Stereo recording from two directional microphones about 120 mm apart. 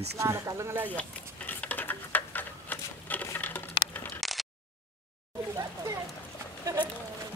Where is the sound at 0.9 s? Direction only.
10° left (ahead or behind).